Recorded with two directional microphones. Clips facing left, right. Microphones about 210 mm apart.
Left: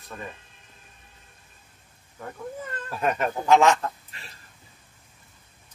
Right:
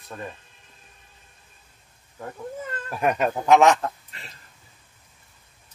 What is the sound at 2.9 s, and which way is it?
Speech, 15° right (ahead or behind).